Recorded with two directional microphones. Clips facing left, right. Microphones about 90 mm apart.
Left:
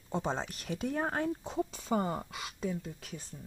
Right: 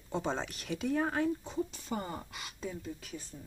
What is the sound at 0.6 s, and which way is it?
Speech, 35° left (ahead or behind).